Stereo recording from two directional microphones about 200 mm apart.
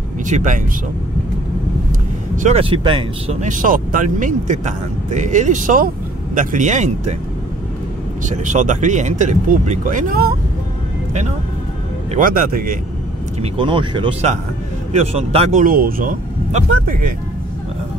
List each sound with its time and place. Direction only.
0.3 s speech: 40° right (ahead or behind)
2.3 s speech: 35° right (ahead or behind)
3.3 s speech: 40° right (ahead or behind)
8.3 s speech: 40° right (ahead or behind)
12.1 s speech: 45° right (ahead or behind)
13.4 s speech: 25° right (ahead or behind)
15.6 s speech: 45° right (ahead or behind)